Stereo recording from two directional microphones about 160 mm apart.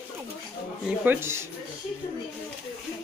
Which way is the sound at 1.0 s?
15° right (ahead or behind).